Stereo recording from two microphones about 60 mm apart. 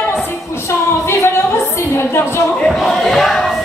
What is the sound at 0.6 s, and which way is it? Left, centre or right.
Music, left.